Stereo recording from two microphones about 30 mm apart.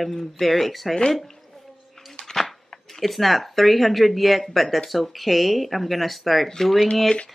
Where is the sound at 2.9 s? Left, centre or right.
Centre.